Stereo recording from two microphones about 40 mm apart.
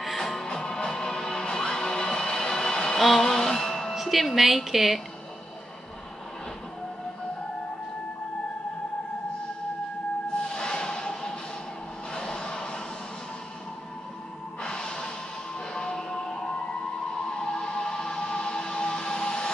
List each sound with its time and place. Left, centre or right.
0.2 s music: centre
3.9 s speech: centre
10.4 s a sound: left
14.6 s music: left